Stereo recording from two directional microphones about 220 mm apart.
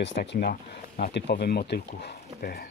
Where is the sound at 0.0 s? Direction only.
50° left (ahead or behind).